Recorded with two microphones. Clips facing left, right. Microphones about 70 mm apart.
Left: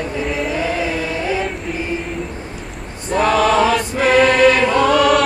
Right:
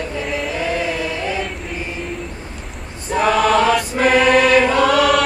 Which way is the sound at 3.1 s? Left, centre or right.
Centre.